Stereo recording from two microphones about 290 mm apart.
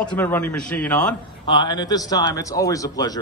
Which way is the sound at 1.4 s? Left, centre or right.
Centre.